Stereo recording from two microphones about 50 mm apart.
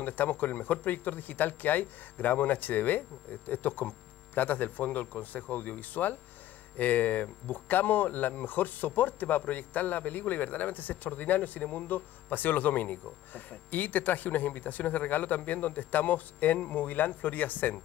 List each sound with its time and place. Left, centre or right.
0.0 s speech: left